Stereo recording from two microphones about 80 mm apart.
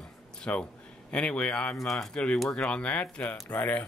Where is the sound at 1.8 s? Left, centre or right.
Centre; by 3.8 s left.